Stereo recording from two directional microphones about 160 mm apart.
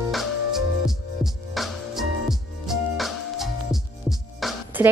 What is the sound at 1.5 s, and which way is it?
Music, centre (ahead or behind).